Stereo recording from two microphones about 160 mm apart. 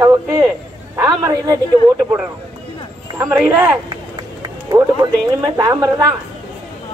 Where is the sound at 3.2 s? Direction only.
20° right (ahead or behind).